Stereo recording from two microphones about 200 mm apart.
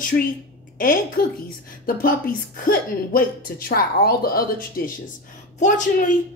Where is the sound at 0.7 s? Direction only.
45° left (ahead or behind).